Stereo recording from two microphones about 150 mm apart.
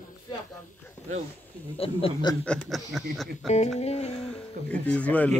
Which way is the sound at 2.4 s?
5° left (ahead or behind).